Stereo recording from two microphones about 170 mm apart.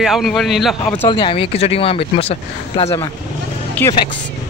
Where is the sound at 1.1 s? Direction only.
30° left (ahead or behind).